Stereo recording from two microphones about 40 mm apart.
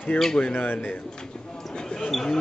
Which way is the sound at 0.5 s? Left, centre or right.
Left.